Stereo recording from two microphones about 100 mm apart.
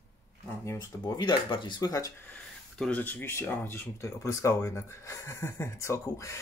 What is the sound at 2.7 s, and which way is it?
Speech, 10° left (ahead or behind).